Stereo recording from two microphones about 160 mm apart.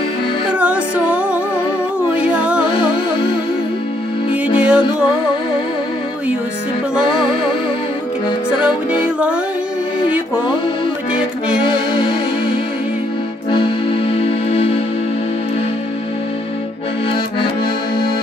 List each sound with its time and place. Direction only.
0.5 s music: 10° right (ahead or behind)
2.7 s music: 30° left (ahead or behind)
4.6 s music: 5° right (ahead or behind)
9.0 s music: 10° right (ahead or behind)
11.6 s music: 30° left (ahead or behind)
13.5 s music: 30° left (ahead or behind)